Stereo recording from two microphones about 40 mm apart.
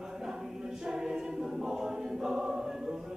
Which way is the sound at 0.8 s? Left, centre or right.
Centre.